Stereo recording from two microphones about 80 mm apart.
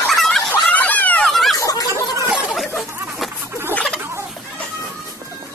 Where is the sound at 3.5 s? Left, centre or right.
Right.